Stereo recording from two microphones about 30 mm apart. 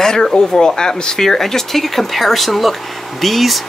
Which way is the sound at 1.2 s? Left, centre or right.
Centre.